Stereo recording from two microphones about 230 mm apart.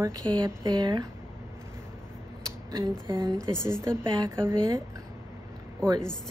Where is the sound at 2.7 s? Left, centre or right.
Centre.